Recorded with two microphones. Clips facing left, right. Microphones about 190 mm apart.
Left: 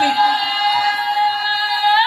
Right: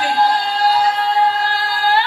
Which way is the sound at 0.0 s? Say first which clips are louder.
Right 1 dB; 50° right (ahead or behind).